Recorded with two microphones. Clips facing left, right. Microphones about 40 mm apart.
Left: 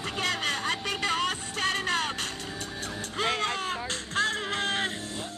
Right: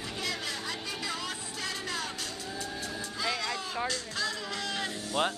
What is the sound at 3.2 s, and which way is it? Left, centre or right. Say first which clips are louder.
Music: left 5 dB; left.